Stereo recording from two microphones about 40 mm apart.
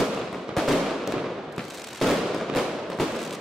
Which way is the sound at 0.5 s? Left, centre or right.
Centre.